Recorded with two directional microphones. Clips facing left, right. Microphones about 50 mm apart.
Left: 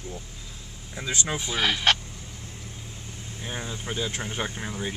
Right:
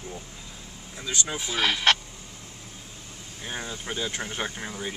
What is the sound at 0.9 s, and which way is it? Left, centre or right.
Speech, left.